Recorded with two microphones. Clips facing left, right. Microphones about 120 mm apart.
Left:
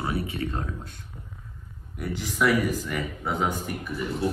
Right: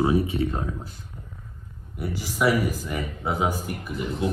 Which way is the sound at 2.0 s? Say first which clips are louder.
Even; 5° right (ahead or behind).